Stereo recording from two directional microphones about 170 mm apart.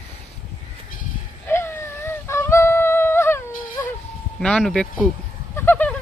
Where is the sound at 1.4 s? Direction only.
15° left (ahead or behind).